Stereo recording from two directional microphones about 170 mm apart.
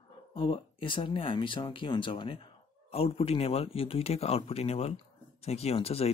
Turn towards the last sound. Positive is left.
turn(degrees=35)  # may be behind; listen again after turning